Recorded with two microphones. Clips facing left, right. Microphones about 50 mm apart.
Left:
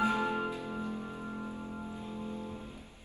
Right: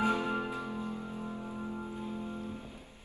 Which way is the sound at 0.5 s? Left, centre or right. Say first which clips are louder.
Even; right.